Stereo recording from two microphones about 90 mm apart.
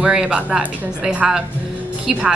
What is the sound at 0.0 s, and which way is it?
Speech, 10° right (ahead or behind).